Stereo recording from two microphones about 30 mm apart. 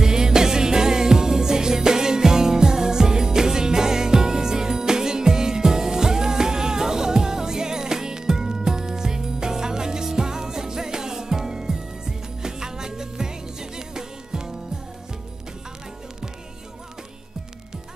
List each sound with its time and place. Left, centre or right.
0.0 s music: right